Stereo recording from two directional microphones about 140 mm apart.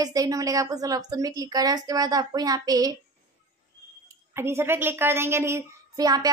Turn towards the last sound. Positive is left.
turn(degrees=-25)  # may be behind; listen again after turning